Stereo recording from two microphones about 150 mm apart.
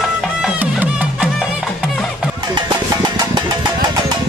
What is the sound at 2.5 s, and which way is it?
Music, 30° right (ahead or behind).